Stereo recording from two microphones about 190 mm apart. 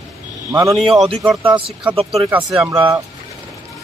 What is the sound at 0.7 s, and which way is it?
Speech, centre (ahead or behind).